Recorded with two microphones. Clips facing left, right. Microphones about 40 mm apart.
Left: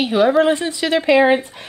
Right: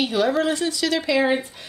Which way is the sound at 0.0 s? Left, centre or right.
Left.